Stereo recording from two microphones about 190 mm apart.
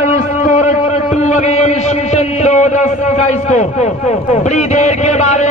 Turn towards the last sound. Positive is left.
turn(degrees=35)  # may be behind; listen again after turning